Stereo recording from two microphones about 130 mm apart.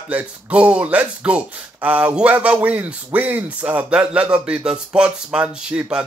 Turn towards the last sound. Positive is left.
turn(degrees=-5)  # may be behind; listen again after turning